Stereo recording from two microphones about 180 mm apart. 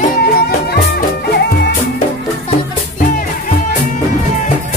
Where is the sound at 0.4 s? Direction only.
60° left (ahead or behind).